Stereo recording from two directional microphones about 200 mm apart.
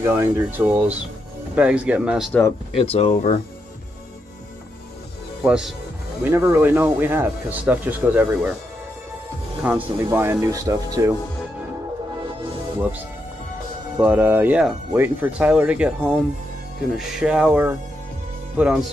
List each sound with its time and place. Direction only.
0.0 s speech: 10° right (ahead or behind)
2.7 s speech: 30° left (ahead or behind)
5.4 s speech: 5° right (ahead or behind)
9.6 s speech: 10° right (ahead or behind)
14.0 s speech: 10° right (ahead or behind)